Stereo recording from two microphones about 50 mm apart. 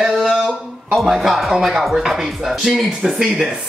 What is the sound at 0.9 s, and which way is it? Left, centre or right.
Speech, centre.